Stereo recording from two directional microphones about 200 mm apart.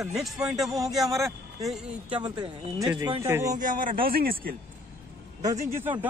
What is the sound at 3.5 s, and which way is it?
Speech, 40° right (ahead or behind).